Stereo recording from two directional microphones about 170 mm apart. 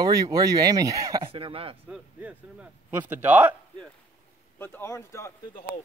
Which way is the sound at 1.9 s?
5° right (ahead or behind).